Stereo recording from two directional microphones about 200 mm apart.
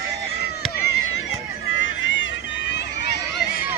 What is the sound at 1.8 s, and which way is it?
Run, 65° left (ahead or behind).